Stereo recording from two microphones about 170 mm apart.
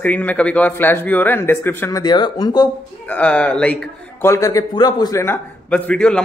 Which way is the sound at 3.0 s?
10° left (ahead or behind).